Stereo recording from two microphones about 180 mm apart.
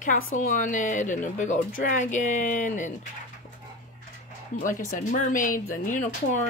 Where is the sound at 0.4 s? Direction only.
45° left (ahead or behind).